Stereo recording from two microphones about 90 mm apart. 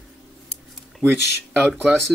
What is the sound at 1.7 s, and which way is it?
Speech, centre (ahead or behind).